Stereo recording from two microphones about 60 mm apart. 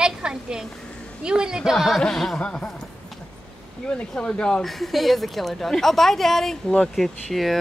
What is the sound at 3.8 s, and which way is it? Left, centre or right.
Speech, centre.